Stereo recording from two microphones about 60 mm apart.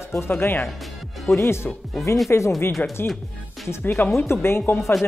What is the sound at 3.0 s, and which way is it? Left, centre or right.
Speech, left.